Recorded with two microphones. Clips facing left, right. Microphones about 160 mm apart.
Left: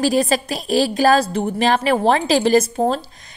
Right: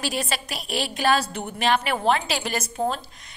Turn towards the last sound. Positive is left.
turn(degrees=35)  # may be behind; listen again after turning